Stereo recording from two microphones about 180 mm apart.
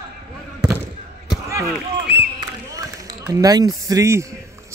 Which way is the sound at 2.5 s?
20° right (ahead or behind).